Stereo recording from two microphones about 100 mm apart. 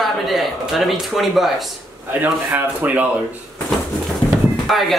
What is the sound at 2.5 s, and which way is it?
Speech, 15° right (ahead or behind).